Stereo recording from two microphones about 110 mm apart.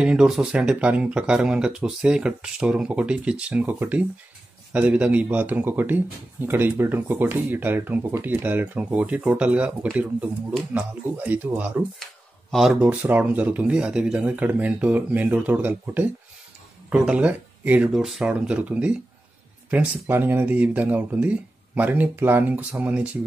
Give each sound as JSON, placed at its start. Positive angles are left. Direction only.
{"t": 0.0, "sound": "speech", "side_deg": -10}
{"t": 12.0, "sound": "a sound", "side_deg": 0}
{"t": 12.8, "sound": "speech", "side_deg": -15}
{"t": 18.0, "sound": "speech", "side_deg": 0}